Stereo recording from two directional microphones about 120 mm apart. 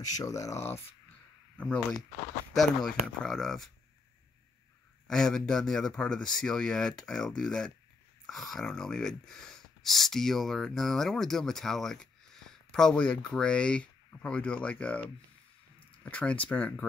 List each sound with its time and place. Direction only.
0.2 s speech: 25° left (ahead or behind)
1.6 s speech: 5° left (ahead or behind)
5.0 s speech: 5° left (ahead or behind)